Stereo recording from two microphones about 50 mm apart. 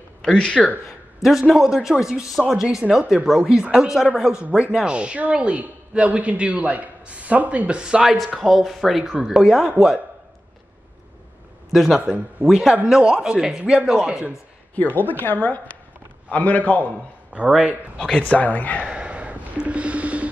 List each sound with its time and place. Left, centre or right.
0.2 s speech: centre
0.5 s speech: right
1.2 s speech: centre
8.4 s speech: centre
11.7 s a man's voice: centre
12.9 s speech: centre
13.6 s speech: right
13.8 s speech: centre
14.8 s a man's voice: left
17.3 s speech: right
18.1 s speech: left
18.8 s dog: right